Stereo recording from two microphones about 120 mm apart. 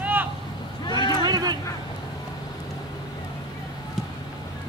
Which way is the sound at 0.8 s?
35° left (ahead or behind).